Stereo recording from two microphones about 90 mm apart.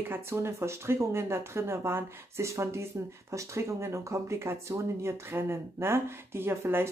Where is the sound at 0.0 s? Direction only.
25° right (ahead or behind).